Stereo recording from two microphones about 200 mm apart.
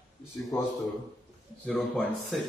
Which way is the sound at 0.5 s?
15° left (ahead or behind).